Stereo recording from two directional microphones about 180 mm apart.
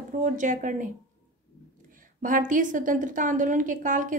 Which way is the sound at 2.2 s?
50° right (ahead or behind).